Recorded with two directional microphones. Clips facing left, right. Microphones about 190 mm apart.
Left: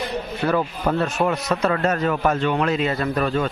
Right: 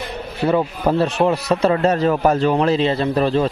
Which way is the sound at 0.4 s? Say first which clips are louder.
Right 5 dB; 25° right (ahead or behind).